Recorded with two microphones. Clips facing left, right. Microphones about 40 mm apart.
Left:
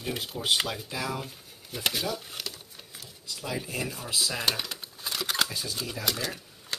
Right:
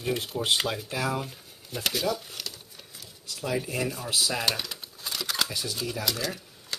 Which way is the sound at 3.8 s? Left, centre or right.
Centre.